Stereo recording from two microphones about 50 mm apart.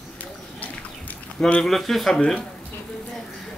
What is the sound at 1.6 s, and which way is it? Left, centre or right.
Speech, centre.